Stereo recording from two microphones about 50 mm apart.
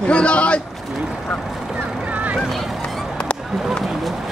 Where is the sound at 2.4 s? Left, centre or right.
Centre.